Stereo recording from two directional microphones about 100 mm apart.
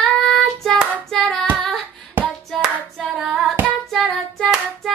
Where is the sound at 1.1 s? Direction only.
5° left (ahead or behind).